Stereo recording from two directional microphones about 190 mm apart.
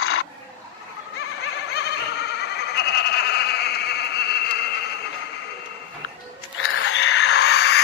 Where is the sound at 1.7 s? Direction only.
60° left (ahead or behind).